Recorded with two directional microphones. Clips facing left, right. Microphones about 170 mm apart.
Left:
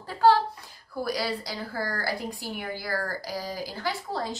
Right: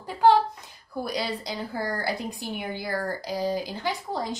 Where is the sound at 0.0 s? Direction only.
20° right (ahead or behind).